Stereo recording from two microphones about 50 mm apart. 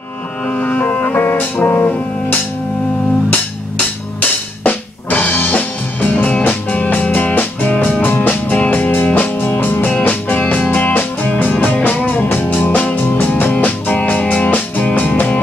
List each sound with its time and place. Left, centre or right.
0.5 s music: left
3.7 s music: left
9.8 s music: left